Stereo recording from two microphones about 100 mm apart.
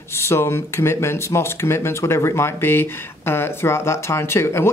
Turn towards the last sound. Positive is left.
turn(degrees=25)  # may be behind; listen again after turning